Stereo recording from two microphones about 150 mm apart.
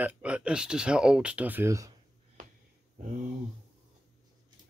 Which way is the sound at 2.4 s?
65° right (ahead or behind).